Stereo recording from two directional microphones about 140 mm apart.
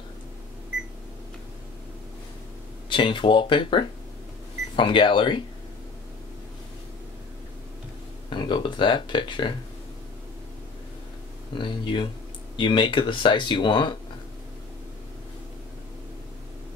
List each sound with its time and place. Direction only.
2.9 s speech: 35° left (ahead or behind)
8.3 s speech: 35° left (ahead or behind)
11.5 s speech: 35° left (ahead or behind)